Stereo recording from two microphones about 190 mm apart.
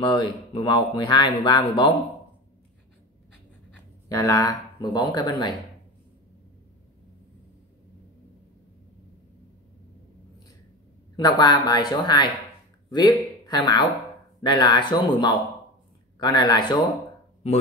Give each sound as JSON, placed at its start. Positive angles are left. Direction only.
{"t": 0.0, "sound": "speech", "side_deg": 25}
{"t": 4.1, "sound": "speech", "side_deg": 20}
{"t": 11.1, "sound": "speech", "side_deg": 20}